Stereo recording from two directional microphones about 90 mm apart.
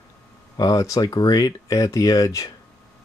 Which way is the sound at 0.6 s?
40° left (ahead or behind).